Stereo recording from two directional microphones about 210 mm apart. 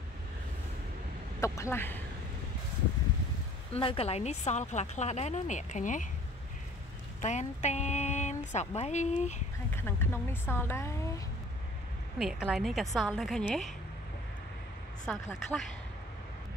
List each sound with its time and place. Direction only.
1.4 s speech: 15° left (ahead or behind)
3.7 s speech: 25° left (ahead or behind)
7.2 s speech: 35° left (ahead or behind)
9.7 s speech: 10° left (ahead or behind)
12.2 s a woman's voice: centre (ahead or behind)